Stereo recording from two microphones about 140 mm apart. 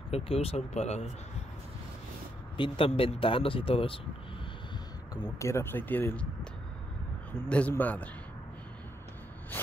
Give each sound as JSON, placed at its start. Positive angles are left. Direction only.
{"t": 0.1, "sound": "speech", "side_deg": 45}
{"t": 2.5, "sound": "speech", "side_deg": 35}
{"t": 5.1, "sound": "speech", "side_deg": 25}
{"t": 7.4, "sound": "speech", "side_deg": 10}